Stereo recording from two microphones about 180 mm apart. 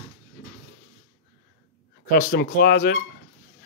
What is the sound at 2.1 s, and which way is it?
Speech, 50° left (ahead or behind).